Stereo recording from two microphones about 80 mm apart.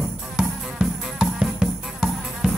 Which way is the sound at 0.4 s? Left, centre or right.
Centre.